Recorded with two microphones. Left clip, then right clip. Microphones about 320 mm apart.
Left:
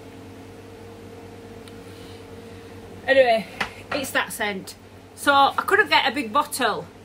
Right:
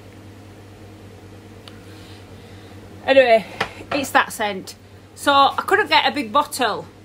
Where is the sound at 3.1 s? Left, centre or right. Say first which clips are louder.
Right 4 dB; centre.